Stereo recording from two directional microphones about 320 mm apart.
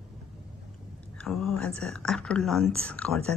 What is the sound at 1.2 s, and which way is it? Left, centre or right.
Speech, centre.